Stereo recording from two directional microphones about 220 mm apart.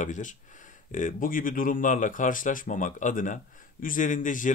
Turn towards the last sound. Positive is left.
turn(degrees=35)  # may be behind; listen again after turning